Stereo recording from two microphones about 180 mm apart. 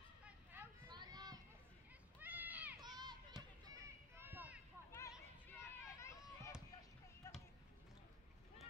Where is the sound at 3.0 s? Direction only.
20° right (ahead or behind).